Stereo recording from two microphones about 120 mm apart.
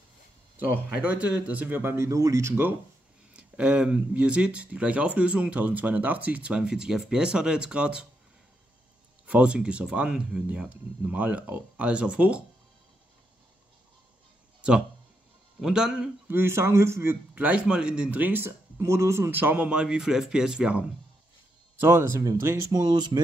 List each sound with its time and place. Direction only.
0.8 s speech: 10° right (ahead or behind)
3.3 s speech: 10° right (ahead or behind)
9.2 s speech: 10° right (ahead or behind)
15.6 s speech: 5° right (ahead or behind)
16.3 s speech: 20° right (ahead or behind)
21.7 s speech: 20° right (ahead or behind); by 23.2 s 35° right (ahead or behind)